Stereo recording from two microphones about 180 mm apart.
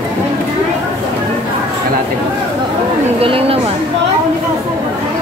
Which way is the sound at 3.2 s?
30° right (ahead or behind).